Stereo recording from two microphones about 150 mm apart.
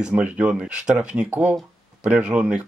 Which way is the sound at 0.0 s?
5° right (ahead or behind).